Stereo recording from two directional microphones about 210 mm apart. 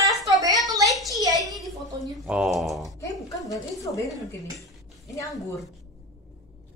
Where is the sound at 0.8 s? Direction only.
Centre (ahead or behind).